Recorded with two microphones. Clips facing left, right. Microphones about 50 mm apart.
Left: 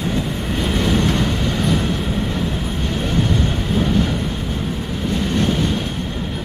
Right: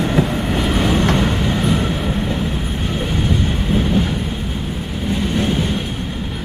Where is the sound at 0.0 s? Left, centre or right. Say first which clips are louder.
Right 5 dB; right.